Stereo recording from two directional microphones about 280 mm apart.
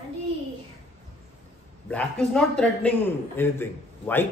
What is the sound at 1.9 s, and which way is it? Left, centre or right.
A man's voice, centre.